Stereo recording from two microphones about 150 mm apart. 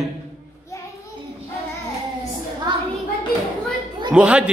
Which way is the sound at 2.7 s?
30° right (ahead or behind).